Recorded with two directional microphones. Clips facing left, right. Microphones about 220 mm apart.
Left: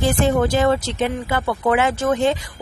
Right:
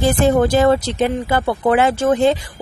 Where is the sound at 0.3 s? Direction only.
35° right (ahead or behind).